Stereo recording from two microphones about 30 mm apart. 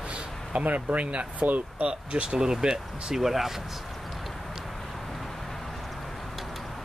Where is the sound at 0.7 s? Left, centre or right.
Right.